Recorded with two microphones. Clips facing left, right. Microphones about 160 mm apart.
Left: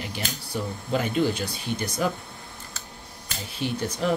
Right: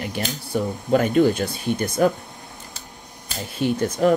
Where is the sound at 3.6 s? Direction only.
50° right (ahead or behind).